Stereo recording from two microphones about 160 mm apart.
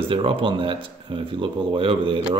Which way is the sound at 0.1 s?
35° right (ahead or behind).